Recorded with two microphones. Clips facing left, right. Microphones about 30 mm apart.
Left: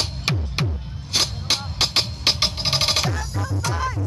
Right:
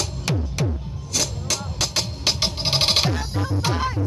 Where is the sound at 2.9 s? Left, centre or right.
Right.